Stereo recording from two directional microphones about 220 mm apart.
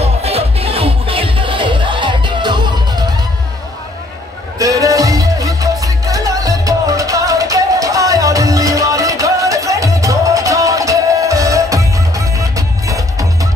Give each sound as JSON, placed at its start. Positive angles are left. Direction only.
{"t": 0.0, "sound": "music", "side_deg": -30}
{"t": 4.6, "sound": "music", "side_deg": -15}